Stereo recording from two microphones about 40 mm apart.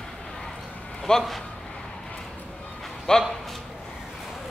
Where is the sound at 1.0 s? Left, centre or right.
Centre.